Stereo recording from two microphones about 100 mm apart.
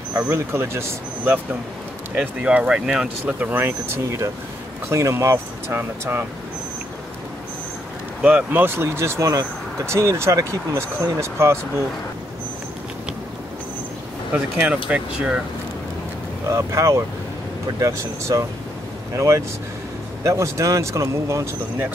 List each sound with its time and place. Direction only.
0.2 s speech: 25° right (ahead or behind)
2.1 s speech: 10° right (ahead or behind)
8.2 s speech: 15° right (ahead or behind)
14.3 s speech: 15° right (ahead or behind)
16.4 s speech: 30° right (ahead or behind)